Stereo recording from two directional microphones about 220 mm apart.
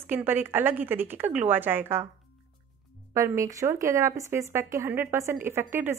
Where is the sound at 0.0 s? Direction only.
10° right (ahead or behind).